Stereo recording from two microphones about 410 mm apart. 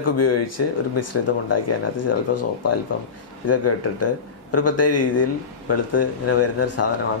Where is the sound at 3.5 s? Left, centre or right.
Left.